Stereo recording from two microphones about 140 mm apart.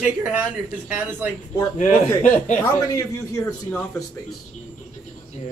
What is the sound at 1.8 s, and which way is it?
Speech, 60° left (ahead or behind).